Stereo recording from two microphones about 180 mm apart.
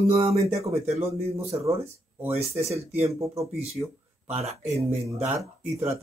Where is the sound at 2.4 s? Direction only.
35° right (ahead or behind).